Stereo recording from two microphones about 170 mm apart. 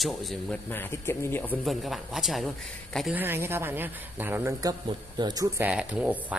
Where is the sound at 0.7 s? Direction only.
15° left (ahead or behind).